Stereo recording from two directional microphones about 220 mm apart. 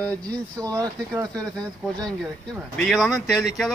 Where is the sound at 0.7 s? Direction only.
15° right (ahead or behind).